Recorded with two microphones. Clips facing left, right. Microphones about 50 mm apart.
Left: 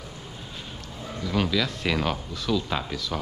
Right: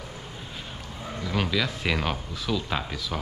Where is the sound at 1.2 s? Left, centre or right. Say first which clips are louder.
Left 2 dB; centre.